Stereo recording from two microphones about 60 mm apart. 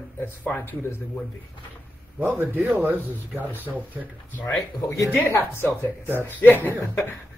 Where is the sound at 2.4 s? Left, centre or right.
Right.